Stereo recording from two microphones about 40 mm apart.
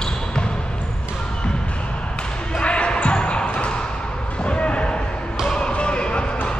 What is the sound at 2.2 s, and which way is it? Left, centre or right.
Basketball bounce, left.